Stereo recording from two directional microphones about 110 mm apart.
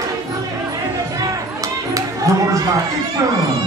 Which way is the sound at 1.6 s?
30° right (ahead or behind).